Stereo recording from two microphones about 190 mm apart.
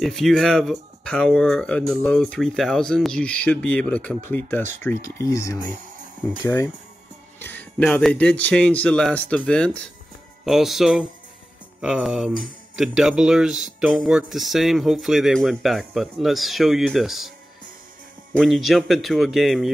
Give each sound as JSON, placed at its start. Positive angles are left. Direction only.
{"t": 0.0, "sound": "speech", "side_deg": 0}
{"t": 7.3, "sound": "speech", "side_deg": 10}
{"t": 18.3, "sound": "speech", "side_deg": 0}